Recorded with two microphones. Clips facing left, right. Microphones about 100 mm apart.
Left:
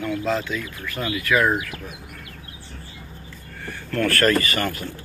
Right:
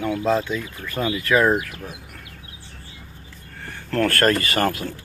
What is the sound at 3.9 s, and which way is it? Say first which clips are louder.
Speech: right 1 dB; 45° right (ahead or behind).